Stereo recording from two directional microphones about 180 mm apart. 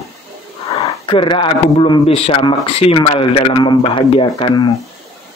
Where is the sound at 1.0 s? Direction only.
30° left (ahead or behind).